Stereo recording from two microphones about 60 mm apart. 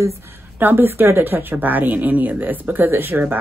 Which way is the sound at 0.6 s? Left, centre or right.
Right.